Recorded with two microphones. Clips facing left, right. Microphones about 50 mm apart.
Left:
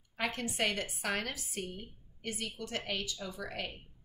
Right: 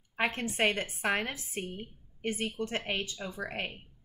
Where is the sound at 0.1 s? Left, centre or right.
Right.